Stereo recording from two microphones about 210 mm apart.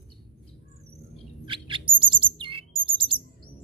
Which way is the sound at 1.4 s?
25° right (ahead or behind).